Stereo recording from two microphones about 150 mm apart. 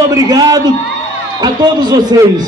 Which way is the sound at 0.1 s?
25° right (ahead or behind).